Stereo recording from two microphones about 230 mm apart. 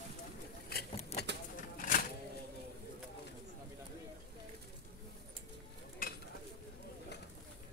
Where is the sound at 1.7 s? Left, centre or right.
Left.